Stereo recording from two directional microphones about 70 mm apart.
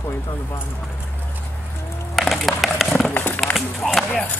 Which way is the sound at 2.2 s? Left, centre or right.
Centre.